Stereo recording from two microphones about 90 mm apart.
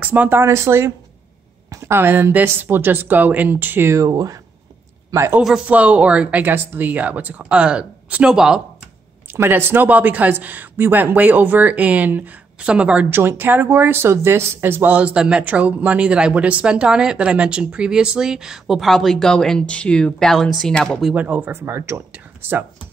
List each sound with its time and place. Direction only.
0.0 s speech: 15° right (ahead or behind)
0.4 s speech: 30° right (ahead or behind)
4.0 s speech: 40° right (ahead or behind)
5.7 s speech: 15° right (ahead or behind)
9.3 s speech: 25° right (ahead or behind)
13.1 s speech: 25° right (ahead or behind); by 21.1 s 5° left (ahead or behind)
21.1 s speech: 20° right (ahead or behind)
22.1 s a sound: 25° right (ahead or behind)